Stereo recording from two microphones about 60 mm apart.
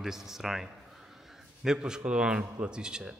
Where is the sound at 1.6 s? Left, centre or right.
Centre.